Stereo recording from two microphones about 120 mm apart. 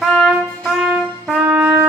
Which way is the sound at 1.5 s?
10° right (ahead or behind).